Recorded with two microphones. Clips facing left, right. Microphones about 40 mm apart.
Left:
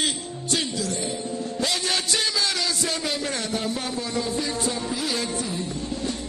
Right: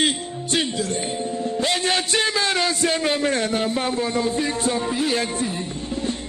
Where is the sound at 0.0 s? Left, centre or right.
Right.